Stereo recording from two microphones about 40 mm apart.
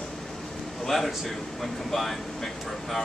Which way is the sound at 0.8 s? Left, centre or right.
Centre.